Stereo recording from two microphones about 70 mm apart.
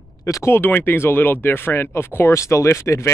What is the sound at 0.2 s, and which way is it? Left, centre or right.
Speech, left.